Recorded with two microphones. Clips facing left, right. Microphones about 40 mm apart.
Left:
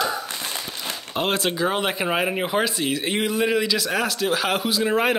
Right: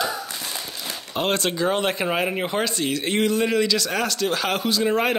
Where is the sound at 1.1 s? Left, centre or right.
Centre.